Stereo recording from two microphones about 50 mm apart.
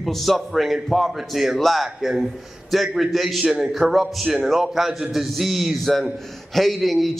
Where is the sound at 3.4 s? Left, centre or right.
Right.